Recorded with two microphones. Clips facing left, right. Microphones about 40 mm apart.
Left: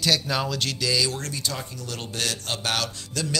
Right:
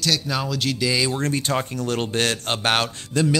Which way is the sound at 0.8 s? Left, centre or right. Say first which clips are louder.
Right 3 dB; right.